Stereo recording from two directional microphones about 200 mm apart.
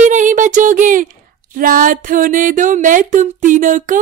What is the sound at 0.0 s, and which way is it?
Speech, 40° right (ahead or behind).